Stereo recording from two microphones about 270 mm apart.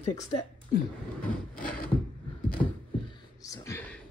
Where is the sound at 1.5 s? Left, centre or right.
Left.